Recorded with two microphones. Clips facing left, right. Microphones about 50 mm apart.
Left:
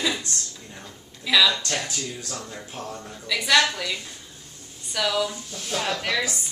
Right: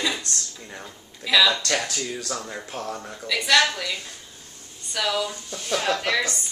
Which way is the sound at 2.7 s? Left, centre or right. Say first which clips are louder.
Right 4 dB; right.